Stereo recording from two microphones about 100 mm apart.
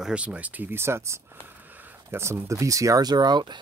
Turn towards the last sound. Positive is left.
turn(degrees=-45)  # may be behind; listen again after turning